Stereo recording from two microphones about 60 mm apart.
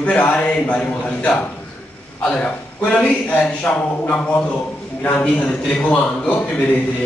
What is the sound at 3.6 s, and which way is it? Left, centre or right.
Speech, centre.